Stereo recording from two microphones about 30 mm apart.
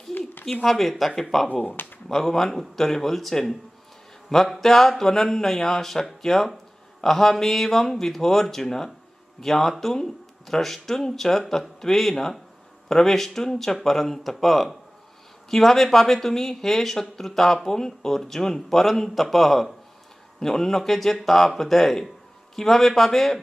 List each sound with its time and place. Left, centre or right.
0.1 s a sound: left
0.7 s speech: centre
4.6 s speech: centre